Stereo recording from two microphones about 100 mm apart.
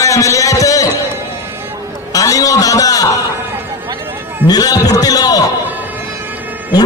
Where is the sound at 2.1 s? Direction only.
35° left (ahead or behind).